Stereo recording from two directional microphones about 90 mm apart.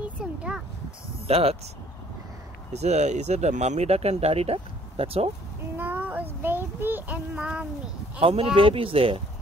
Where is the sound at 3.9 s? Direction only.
90° right.